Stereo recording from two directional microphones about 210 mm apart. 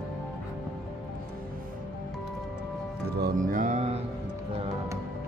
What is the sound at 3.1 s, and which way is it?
Music, 45° right (ahead or behind).